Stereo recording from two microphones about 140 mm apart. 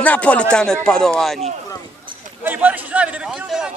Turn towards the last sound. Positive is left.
turn(degrees=-5)  # may be behind; listen again after turning